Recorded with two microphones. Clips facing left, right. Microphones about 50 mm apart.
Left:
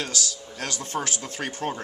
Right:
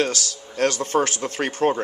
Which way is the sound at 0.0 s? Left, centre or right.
Right.